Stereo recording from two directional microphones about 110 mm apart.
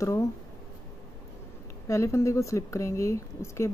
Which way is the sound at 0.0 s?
30° left (ahead or behind).